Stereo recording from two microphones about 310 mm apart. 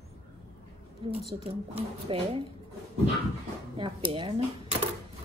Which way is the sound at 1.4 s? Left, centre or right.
Centre.